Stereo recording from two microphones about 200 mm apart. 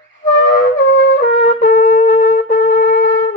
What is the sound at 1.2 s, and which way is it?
Wind instrument, 45° left (ahead or behind).